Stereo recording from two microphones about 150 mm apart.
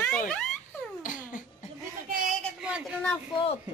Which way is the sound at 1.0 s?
60° left (ahead or behind).